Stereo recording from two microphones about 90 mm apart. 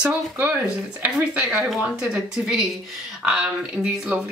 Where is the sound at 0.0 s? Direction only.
20° right (ahead or behind).